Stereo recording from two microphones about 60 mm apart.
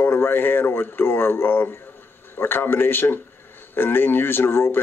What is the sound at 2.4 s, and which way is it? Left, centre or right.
Speech, left.